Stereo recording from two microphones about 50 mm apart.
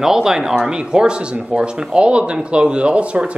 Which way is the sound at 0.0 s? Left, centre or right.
Centre.